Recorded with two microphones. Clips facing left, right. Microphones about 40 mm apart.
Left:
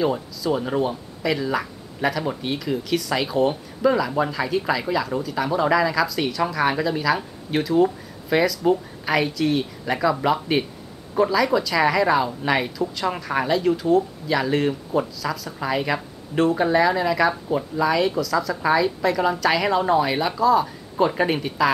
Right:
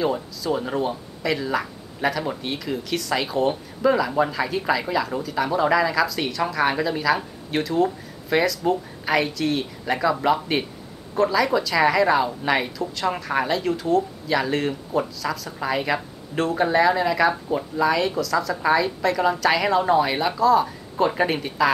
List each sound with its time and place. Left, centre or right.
0.0 s speech: centre